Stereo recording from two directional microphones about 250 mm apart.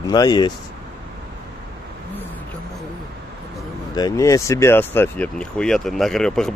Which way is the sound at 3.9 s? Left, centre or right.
Centre.